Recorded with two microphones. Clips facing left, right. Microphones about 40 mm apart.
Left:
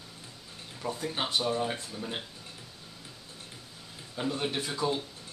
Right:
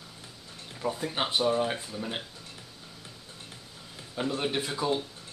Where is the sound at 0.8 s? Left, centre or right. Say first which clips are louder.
Right 3 dB; centre.